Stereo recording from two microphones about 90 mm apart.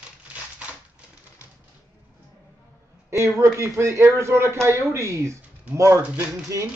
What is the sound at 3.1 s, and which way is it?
Speech, 35° right (ahead or behind).